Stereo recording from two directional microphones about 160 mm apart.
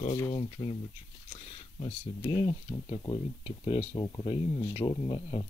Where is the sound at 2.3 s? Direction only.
30° left (ahead or behind).